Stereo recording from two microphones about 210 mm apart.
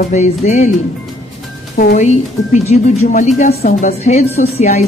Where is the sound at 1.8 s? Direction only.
40° left (ahead or behind).